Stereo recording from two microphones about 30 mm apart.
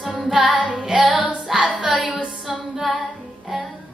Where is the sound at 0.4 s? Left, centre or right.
Right.